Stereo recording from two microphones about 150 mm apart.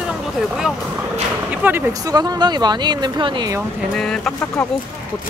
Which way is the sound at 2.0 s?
25° right (ahead or behind).